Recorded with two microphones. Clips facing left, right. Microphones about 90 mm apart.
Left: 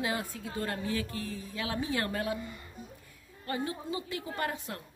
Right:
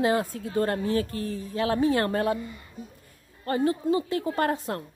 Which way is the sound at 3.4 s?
45° right (ahead or behind).